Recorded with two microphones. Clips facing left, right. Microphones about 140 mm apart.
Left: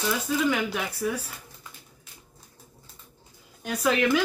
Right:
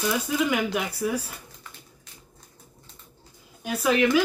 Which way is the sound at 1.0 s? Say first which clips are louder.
Right 1 dB; 5° right (ahead or behind).